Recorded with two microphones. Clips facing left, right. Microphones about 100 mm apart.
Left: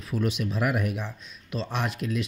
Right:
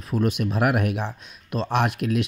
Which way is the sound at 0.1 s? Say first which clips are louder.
Right 4 dB; 45° right (ahead or behind).